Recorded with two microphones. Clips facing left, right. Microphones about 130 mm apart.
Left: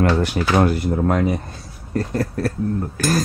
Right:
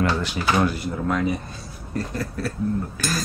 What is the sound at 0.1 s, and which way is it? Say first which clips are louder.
Speech: left 4 dB; 55° left (ahead or behind).